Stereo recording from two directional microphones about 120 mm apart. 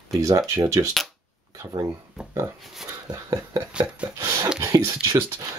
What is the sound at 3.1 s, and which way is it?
Speech, 30° right (ahead or behind).